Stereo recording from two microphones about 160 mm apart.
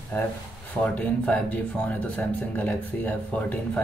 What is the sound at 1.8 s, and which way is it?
Speech, 10° left (ahead or behind).